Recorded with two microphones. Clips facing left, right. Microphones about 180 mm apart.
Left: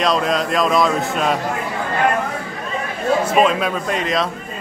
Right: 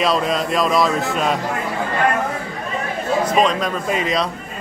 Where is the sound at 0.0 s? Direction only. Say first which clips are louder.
Left 1 dB; centre (ahead or behind).